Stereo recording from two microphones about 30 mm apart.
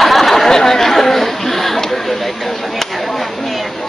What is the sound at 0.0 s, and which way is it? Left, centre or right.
Chatter, centre.